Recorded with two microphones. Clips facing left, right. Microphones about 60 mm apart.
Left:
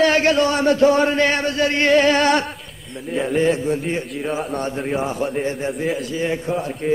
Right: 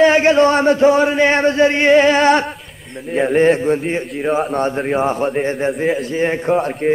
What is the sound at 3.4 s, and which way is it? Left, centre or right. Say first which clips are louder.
Speech: right 5 dB; right.